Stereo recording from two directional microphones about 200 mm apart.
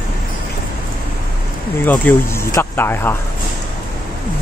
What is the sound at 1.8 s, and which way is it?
Speech, 10° left (ahead or behind).